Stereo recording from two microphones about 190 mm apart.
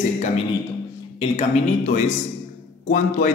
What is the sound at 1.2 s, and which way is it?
Speech, 30° left (ahead or behind).